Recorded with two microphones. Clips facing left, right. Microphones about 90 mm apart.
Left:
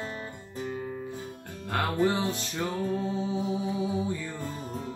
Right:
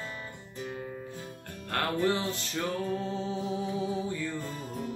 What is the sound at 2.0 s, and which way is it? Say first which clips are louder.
Music: left 2 dB; 15° left (ahead or behind).